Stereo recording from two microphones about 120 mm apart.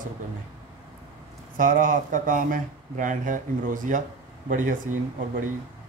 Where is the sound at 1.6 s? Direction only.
90° right.